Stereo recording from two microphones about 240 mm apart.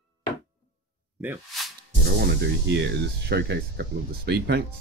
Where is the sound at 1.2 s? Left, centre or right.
Centre.